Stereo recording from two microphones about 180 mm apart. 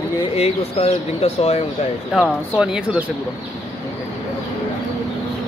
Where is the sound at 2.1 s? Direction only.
5° right (ahead or behind).